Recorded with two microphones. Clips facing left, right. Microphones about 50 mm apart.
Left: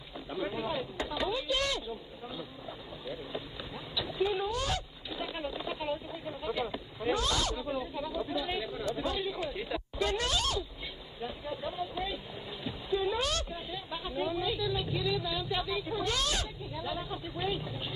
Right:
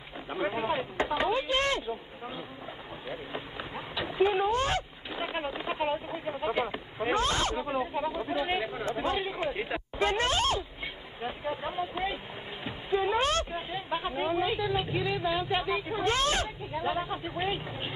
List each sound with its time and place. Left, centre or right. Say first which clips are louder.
0.3 s speech: right 4 dB; right
11.1 s a sound: right 4 dB; right
12.6 s a woman's voice: right 3 dB; right